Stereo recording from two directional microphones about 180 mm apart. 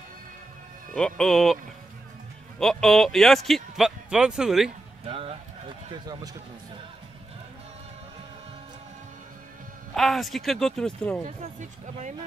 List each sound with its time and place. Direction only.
0.9 s speech: 5° left (ahead or behind)
2.6 s speech: centre (ahead or behind)
5.0 s speech: 35° right (ahead or behind)
9.9 s speech: centre (ahead or behind)